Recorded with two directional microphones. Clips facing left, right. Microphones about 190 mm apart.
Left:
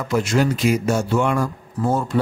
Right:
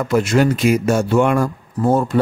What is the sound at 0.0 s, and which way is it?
Speech, 60° right (ahead or behind).